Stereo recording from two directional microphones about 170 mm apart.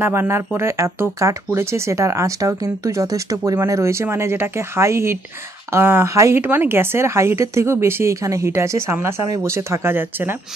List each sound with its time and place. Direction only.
0.0 s speech: 15° right (ahead or behind)